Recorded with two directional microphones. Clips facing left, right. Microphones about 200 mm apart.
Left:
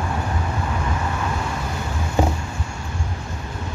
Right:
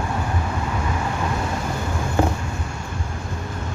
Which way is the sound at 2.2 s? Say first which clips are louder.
Even; 15° left (ahead or behind).